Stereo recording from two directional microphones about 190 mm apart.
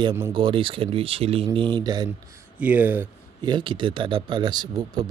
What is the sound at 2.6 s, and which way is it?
Speech, 10° right (ahead or behind).